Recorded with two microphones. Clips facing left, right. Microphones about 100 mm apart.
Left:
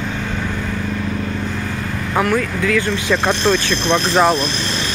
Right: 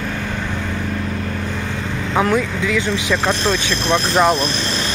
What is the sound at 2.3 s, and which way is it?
Speech, 20° right (ahead or behind).